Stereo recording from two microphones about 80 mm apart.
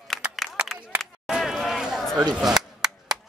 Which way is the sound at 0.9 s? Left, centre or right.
Centre.